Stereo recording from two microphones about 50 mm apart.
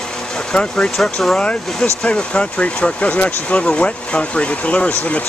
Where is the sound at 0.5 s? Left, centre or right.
Centre.